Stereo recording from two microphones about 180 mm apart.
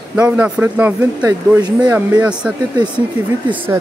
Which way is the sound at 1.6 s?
25° right (ahead or behind).